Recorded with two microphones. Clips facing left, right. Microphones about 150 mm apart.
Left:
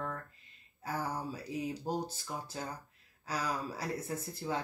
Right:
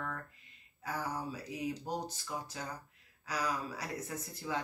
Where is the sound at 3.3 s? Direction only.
30° left (ahead or behind).